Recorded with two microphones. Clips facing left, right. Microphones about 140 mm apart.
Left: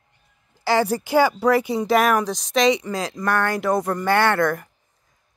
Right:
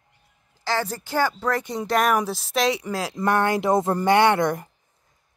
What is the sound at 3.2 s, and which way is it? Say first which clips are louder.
A woman's voice: right 2 dB; 20° right (ahead or behind).